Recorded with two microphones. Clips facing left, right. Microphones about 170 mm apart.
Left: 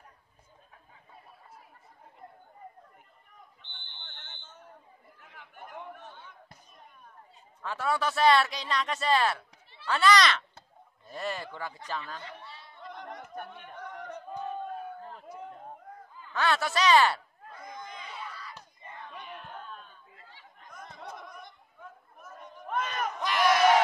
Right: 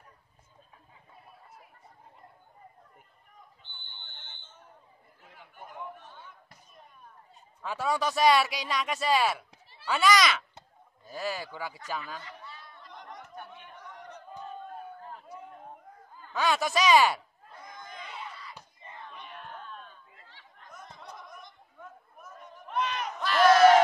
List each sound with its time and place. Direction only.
7.6 s a man's voice: 15° right (ahead or behind)
13.0 s a sound: 60° left (ahead or behind)
16.3 s a man's voice: 15° right (ahead or behind)
18.2 s crowd: 25° right (ahead or behind)
19.3 s a sound: centre (ahead or behind)
22.7 s crowd: 45° left (ahead or behind)
23.2 s crowd: 15° left (ahead or behind)